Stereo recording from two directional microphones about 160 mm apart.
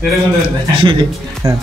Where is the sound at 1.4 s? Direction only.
20° right (ahead or behind).